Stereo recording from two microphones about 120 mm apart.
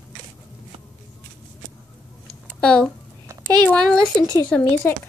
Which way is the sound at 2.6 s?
5° left (ahead or behind).